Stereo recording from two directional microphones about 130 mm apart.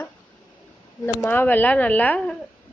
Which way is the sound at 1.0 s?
15° left (ahead or behind).